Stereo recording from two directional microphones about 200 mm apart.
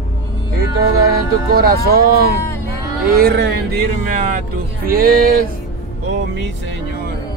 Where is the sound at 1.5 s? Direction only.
50° right (ahead or behind).